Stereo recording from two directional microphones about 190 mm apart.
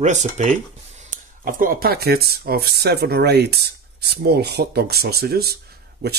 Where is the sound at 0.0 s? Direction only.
40° right (ahead or behind).